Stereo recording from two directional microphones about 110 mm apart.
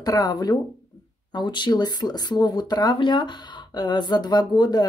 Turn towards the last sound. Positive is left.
turn(degrees=40)  # may be behind; listen again after turning